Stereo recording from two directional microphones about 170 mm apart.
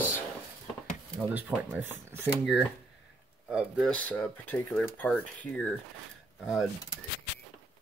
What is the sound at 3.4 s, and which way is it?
Speech, 5° right (ahead or behind).